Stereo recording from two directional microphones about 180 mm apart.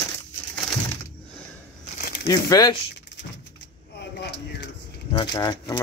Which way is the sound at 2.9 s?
75° left (ahead or behind).